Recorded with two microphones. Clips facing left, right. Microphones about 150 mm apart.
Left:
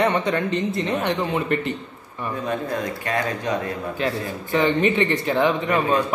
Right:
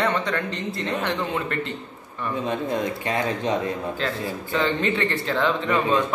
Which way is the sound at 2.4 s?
20° right (ahead or behind).